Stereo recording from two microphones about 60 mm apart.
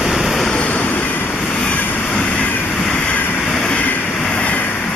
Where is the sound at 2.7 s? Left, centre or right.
Centre.